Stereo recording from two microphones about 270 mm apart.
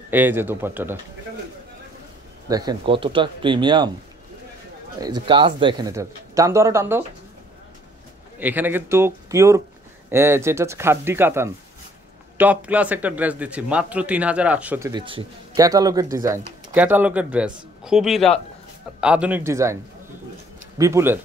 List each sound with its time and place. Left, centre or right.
0.1 s speech: centre
2.4 s speech: centre
5.0 s speech: centre
8.4 s a man's voice: centre